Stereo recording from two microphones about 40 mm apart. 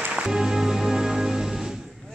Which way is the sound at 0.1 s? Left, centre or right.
Centre.